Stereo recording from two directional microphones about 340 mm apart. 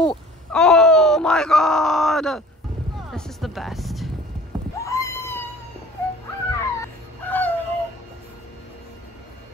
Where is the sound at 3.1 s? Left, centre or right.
Centre.